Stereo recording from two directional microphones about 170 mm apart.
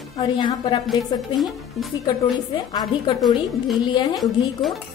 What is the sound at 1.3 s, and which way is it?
Speech, centre (ahead or behind).